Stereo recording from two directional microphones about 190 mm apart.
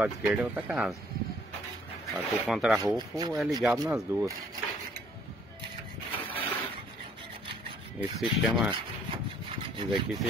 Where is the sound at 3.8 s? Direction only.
15° right (ahead or behind).